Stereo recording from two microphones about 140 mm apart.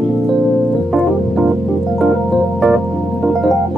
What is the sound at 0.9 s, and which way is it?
Keyboard, centre (ahead or behind).